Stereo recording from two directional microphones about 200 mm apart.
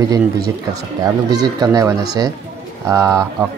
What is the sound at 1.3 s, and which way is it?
Speech, 20° right (ahead or behind).